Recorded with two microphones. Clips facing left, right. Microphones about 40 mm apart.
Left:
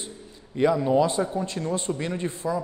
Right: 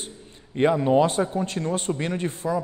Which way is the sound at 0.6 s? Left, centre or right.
Right.